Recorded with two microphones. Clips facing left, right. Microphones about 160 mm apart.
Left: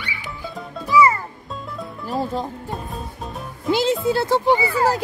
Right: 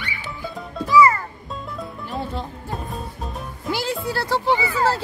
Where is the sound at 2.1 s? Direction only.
40° left (ahead or behind).